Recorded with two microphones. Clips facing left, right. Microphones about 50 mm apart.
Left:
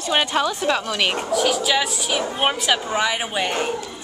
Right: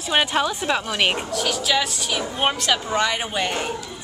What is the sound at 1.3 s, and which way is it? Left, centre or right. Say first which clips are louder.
A woman's voice: left 3 dB; centre.